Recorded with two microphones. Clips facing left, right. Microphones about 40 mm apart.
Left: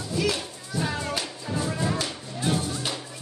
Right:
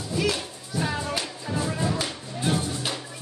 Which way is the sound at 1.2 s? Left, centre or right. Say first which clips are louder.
Right 1 dB; centre.